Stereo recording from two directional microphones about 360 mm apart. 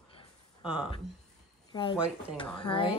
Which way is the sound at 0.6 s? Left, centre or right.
Centre.